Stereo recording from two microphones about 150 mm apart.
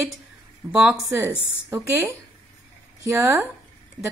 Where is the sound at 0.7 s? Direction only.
10° right (ahead or behind).